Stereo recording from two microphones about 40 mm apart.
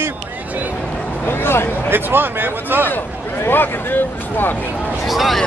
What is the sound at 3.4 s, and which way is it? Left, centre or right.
Speech, left.